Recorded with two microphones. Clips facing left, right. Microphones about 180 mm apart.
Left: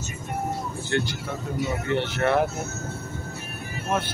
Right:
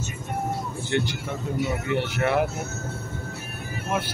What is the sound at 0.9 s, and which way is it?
Speech, 15° right (ahead or behind).